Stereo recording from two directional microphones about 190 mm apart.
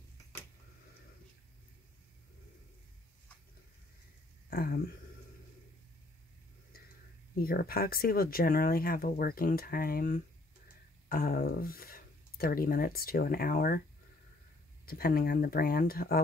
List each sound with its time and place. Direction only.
4.5 s speech: 50° left (ahead or behind)
7.4 s speech: 50° left (ahead or behind)
14.9 s speech: 50° left (ahead or behind)